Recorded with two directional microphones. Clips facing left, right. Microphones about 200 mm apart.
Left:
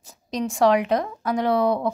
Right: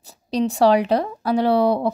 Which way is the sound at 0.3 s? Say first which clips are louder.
Right 3 dB; 35° right (ahead or behind).